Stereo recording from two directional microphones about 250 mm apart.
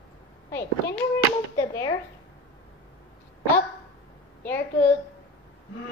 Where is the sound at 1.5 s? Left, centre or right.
Centre.